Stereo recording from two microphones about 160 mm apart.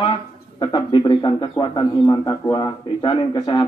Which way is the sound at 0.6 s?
30° left (ahead or behind).